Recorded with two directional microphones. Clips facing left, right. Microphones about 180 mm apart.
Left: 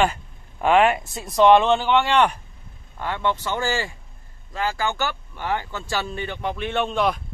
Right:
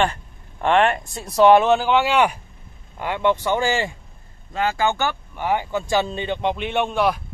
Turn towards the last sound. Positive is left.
turn(degrees=-10)  # may be behind; listen again after turning